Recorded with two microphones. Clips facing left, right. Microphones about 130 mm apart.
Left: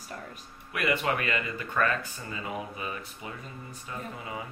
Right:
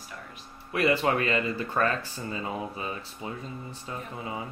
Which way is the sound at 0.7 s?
30° right (ahead or behind).